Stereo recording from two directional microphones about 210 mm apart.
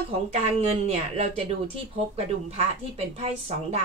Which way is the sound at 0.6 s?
30° right (ahead or behind).